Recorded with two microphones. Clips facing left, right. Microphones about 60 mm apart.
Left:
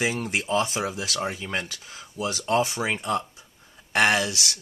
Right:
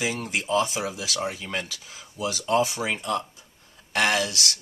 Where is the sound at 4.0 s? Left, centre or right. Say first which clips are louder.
Left 2 dB; left.